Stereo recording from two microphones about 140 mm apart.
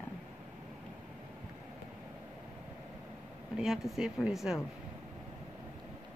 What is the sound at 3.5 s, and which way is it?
Speech, 5° right (ahead or behind).